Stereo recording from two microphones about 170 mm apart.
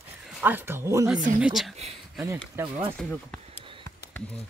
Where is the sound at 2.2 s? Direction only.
15° right (ahead or behind).